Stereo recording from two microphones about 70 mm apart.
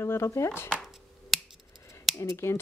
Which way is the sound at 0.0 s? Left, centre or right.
Left.